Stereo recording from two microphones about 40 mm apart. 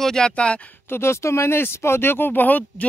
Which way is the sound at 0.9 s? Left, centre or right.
Left.